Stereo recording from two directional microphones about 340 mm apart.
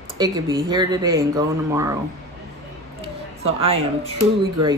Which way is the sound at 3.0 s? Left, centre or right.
Centre.